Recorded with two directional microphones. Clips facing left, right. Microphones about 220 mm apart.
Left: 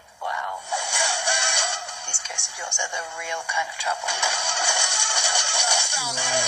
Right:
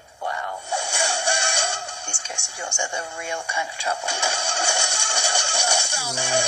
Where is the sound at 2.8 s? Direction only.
30° right (ahead or behind).